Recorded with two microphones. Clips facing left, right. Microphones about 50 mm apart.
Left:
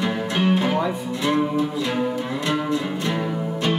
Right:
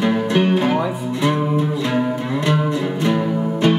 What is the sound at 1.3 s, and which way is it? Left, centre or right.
Music, centre.